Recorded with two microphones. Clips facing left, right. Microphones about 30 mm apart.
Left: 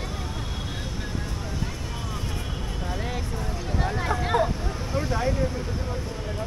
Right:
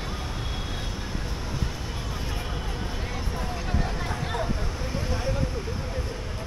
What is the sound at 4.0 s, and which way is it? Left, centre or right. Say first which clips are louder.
Vehicle: left 6 dB; left.